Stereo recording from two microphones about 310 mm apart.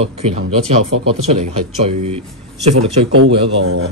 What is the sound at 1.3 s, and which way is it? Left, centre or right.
Speech, centre.